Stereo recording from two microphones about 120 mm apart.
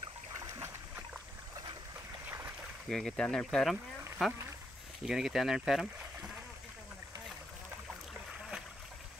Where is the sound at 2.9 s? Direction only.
5° left (ahead or behind).